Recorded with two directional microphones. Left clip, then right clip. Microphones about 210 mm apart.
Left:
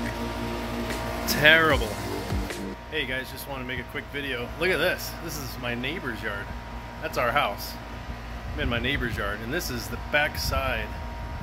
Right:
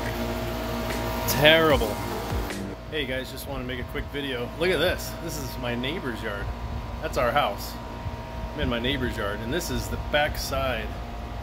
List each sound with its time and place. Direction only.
1.2 s speech: 15° right (ahead or behind)
2.5 s speech: centre (ahead or behind)
8.5 s speech: 5° left (ahead or behind)